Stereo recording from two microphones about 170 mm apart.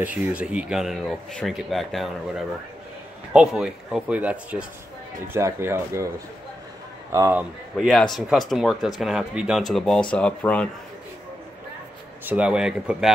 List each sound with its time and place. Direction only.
0.4 s speech: 5° right (ahead or behind)
7.7 s speech: centre (ahead or behind)
12.3 s speech: 5° right (ahead or behind)